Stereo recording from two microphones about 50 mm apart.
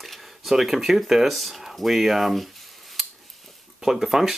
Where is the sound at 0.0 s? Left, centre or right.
Centre.